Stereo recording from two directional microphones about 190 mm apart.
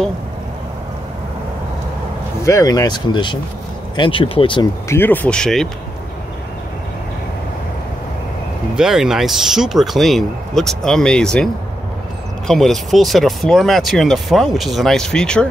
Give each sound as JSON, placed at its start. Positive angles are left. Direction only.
{"t": 2.4, "sound": "speech", "side_deg": 20}
{"t": 4.8, "sound": "speech", "side_deg": 10}
{"t": 8.7, "sound": "speech", "side_deg": -5}